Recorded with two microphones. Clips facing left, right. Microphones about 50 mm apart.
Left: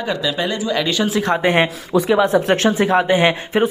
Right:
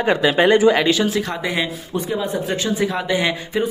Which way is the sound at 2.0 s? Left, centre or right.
Left.